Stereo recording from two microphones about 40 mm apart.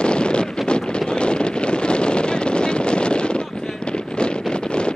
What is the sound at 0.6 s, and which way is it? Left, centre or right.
Wind noise, left.